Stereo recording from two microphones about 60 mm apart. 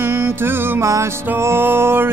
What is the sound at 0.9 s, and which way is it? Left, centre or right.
Music, right.